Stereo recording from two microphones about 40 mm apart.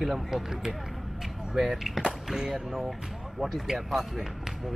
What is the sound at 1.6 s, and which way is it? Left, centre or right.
Speech, centre.